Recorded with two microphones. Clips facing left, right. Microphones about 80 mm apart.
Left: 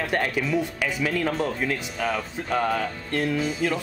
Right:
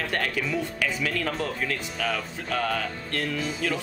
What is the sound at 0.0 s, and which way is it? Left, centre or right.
Speech, centre.